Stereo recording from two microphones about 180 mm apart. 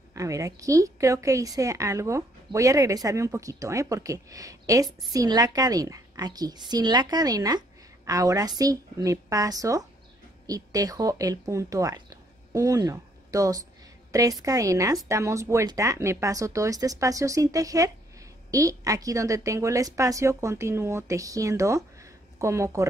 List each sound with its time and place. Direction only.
0.1 s a woman's voice: 15° right (ahead or behind)